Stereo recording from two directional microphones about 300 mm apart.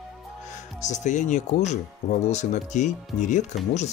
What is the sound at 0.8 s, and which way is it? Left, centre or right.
Speech, left.